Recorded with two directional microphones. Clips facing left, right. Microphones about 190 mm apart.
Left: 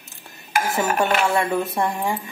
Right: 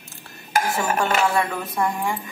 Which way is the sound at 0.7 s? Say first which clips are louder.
Left 4 dB; 20° left (ahead or behind).